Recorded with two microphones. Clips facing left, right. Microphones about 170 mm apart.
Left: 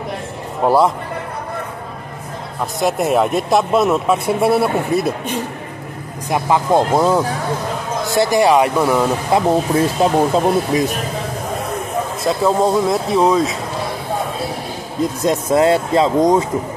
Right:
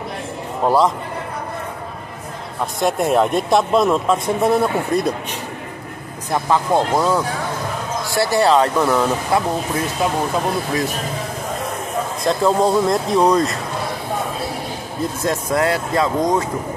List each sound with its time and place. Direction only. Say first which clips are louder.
0.7 s speech: left 2 dB; 10° left (ahead or behind)
2.6 s speech: left 1 dB; centre (ahead or behind)
6.3 s speech: left 2 dB; 15° left (ahead or behind)
9.3 s speech: left 5 dB; 20° left (ahead or behind)
12.3 s speech: left 1 dB; centre (ahead or behind)
15.2 s speech: left 5 dB; 25° left (ahead or behind)